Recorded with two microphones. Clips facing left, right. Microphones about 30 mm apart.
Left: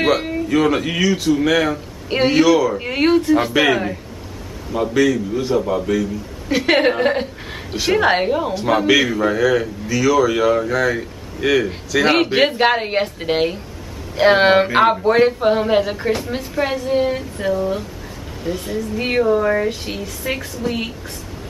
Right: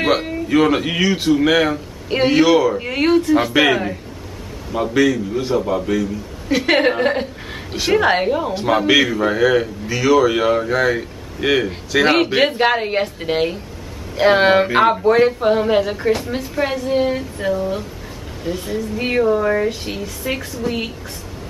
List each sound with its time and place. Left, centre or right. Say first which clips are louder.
0.5 s a man's voice: right 2 dB; centre
2.0 s a man's voice: even; centre
2.4 s a man's voice: right 1 dB; centre
2.7 s a man's voice: even; centre